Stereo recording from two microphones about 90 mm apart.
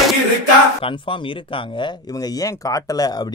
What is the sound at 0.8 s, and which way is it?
Speech, 70° left (ahead or behind).